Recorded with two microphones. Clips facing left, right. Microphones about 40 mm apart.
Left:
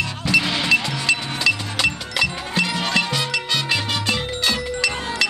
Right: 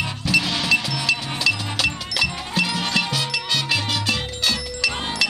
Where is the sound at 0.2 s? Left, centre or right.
Centre.